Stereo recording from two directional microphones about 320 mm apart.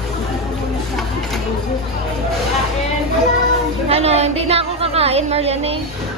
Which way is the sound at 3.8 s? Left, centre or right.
Centre.